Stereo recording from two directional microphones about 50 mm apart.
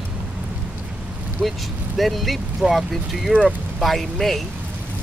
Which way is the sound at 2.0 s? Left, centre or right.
Centre.